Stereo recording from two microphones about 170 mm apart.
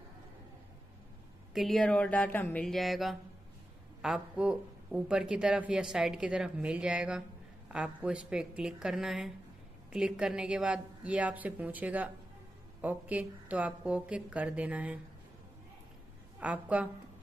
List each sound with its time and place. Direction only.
1.5 s a woman's voice: centre (ahead or behind)
16.3 s a woman's voice: 10° right (ahead or behind)